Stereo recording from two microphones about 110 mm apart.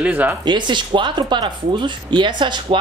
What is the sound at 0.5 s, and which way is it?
Speech, 45° right (ahead or behind).